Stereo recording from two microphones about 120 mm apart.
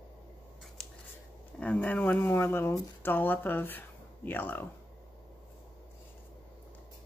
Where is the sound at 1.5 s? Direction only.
10° left (ahead or behind).